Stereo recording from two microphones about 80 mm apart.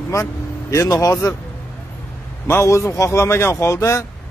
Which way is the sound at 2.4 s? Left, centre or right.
Left.